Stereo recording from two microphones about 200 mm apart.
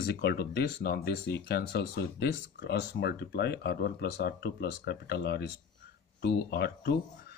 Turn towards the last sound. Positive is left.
turn(degrees=55)  # may be behind; listen again after turning